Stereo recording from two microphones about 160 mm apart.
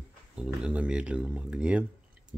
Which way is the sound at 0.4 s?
5° right (ahead or behind).